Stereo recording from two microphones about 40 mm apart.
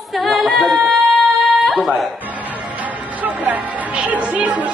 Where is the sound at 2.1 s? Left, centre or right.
Right.